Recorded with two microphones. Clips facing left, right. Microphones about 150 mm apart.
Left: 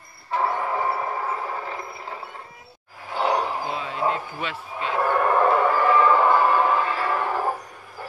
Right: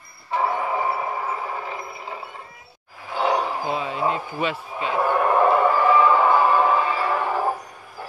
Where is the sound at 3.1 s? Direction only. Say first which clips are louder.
Right 1 dB; centre (ahead or behind).